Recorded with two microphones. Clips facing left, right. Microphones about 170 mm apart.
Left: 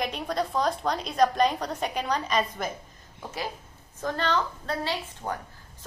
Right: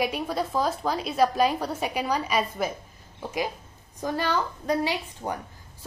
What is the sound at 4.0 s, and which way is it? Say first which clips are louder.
A woman's voice: right 1 dB; 10° right (ahead or behind).